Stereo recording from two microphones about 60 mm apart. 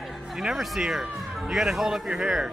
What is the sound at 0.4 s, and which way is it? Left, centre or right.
A man's voice, centre.